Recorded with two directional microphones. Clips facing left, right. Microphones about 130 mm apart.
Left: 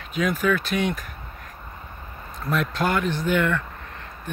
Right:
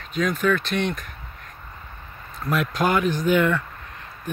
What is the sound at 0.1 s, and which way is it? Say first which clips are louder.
Speech: right 1 dB; 5° left (ahead or behind).